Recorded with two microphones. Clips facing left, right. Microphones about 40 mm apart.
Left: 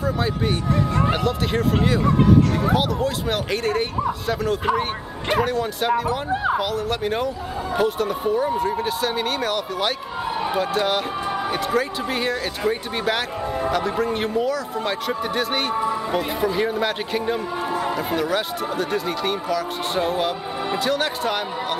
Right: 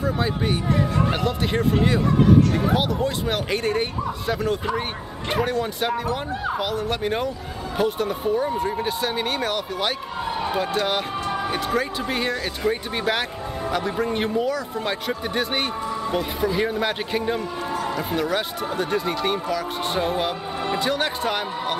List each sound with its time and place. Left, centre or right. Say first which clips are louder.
0.0 s speech: left 1 dB; centre
6.3 s a sound: left 5 dB; centre
6.6 s speech: left 1 dB; centre
15.8 s speech: left 2 dB; centre
17.7 s a sound: left 1 dB; centre
18.1 s speech: left 1 dB; centre